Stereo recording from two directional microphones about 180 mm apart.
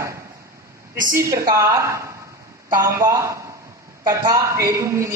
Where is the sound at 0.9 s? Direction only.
50° right (ahead or behind).